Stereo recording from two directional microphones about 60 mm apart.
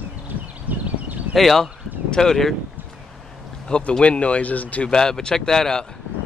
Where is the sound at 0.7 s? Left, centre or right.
Right.